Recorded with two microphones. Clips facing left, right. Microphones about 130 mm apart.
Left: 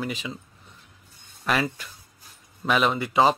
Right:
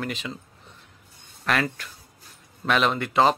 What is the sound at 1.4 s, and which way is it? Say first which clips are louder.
Speech: even; 5° left (ahead or behind).